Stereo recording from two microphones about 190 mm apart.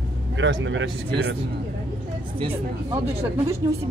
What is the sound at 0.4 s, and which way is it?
Speech, 75° right (ahead or behind).